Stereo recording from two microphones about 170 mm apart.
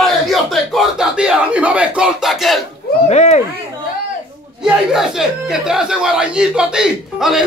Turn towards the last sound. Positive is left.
turn(degrees=-5)  # may be behind; listen again after turning